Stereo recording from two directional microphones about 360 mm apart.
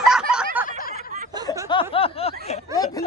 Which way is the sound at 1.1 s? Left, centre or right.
Centre.